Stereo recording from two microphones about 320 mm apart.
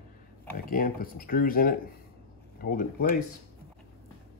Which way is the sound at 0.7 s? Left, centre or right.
Left.